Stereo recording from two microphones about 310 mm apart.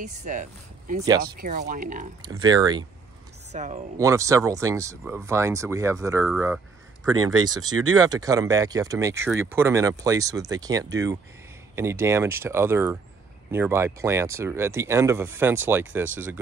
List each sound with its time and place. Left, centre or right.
0.0 s speech: right
2.2 s speech: centre
4.0 s speech: centre